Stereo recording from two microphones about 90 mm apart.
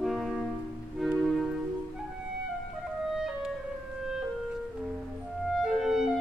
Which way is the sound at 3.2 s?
5° right (ahead or behind).